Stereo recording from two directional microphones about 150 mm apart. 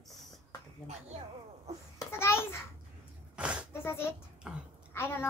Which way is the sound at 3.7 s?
15° left (ahead or behind).